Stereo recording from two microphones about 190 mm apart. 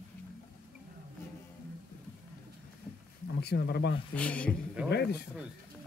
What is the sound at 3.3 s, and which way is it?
Speech, 60° left (ahead or behind).